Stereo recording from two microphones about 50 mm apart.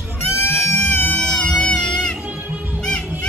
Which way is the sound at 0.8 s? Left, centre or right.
Left.